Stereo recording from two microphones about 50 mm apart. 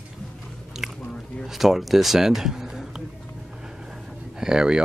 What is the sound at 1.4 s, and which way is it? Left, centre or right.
Speech, centre.